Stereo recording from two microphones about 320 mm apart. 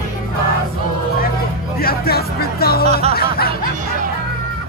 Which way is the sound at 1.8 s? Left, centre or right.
Left.